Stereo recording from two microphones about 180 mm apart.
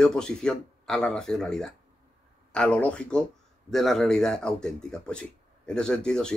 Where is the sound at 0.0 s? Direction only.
5° left (ahead or behind).